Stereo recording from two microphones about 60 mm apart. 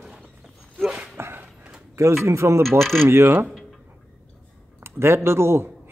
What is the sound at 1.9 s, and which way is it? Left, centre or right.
Speech, right.